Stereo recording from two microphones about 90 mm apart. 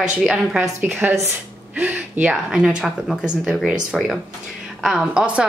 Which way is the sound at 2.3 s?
10° right (ahead or behind).